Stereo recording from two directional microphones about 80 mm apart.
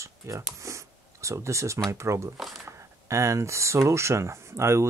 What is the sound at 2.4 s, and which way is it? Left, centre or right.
Speech, centre.